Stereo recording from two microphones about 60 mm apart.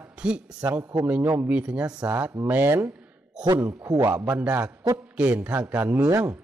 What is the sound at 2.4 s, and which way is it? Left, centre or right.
Speech, right.